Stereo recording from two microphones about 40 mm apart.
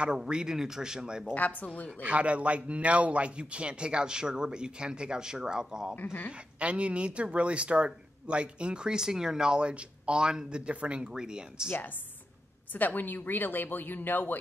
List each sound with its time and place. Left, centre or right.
0.3 s speech: centre
1.3 s speech: left
2.0 s a man's voice: right; by 5.9 s centre
6.6 s a man's voice: right; by 11.7 s centre
12.7 s speech: left